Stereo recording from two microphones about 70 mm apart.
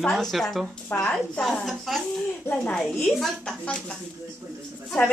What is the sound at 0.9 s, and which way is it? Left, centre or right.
Speech, left.